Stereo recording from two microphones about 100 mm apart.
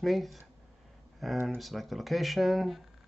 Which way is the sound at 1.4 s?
Centre (ahead or behind).